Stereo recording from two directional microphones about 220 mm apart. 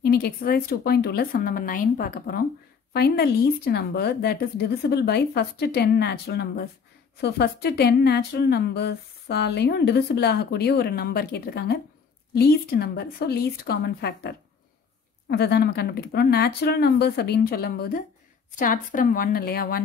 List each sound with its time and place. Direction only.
0.0 s a woman's voice: 45° left (ahead or behind)